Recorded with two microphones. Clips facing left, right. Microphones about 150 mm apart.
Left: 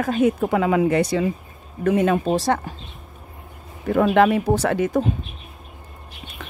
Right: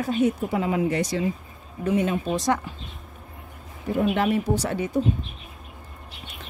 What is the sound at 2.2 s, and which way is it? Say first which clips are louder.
Speech: left 4 dB; 30° left (ahead or behind).